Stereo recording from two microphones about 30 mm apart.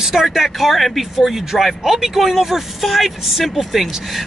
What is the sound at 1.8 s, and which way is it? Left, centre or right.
Speech, centre.